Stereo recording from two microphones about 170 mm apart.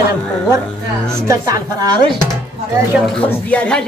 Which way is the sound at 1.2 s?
20° right (ahead or behind).